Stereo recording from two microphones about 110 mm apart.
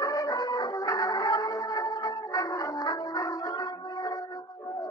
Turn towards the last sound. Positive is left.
turn(degrees=40)  # may be behind; listen again after turning